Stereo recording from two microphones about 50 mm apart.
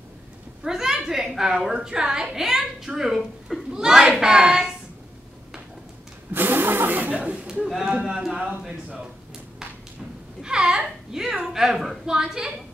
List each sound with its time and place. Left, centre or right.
0.7 s a woman's voice: centre
6.3 s a sound: right
7.2 s a sound: right
7.6 s a woman's voice: centre
10.4 s a woman's voice: centre
12.1 s a woman's voice: centre